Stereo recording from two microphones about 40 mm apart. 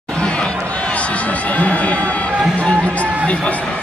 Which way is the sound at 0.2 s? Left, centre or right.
Left.